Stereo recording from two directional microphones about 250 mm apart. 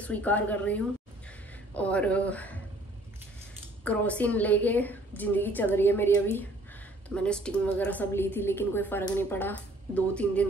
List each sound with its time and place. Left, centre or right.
0.0 s a woman's voice: centre
3.8 s a woman's voice: centre